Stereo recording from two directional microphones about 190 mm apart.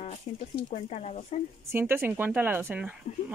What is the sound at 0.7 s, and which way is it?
Speech, 35° left (ahead or behind).